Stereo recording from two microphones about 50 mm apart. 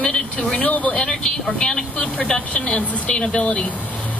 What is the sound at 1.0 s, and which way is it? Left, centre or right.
Speech, centre.